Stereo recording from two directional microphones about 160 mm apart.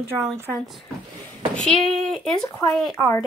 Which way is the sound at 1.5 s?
5° left (ahead or behind).